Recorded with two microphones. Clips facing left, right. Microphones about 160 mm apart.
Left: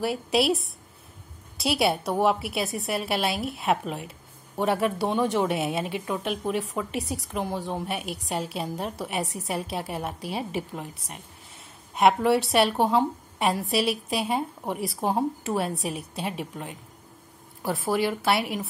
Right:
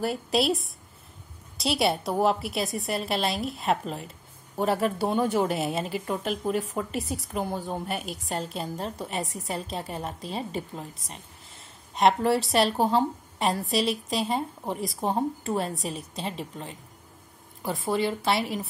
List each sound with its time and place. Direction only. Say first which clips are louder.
0.0 s a woman's voice: left 1 dB; centre (ahead or behind)
9.1 s a woman's voice: left 2 dB; 75° left (ahead or behind)
9.5 s a woman's voice: left 2 dB; 5° left (ahead or behind)
11.9 s a woman's voice: left 1 dB; 5° left (ahead or behind)